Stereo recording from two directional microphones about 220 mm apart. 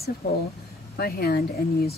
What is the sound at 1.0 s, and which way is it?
Speech, 45° left (ahead or behind).